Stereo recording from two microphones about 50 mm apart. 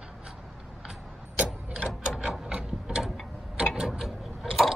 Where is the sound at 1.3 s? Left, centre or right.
Right.